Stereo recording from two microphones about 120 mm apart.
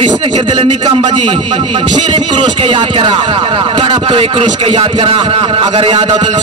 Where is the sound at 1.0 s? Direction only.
45° right (ahead or behind).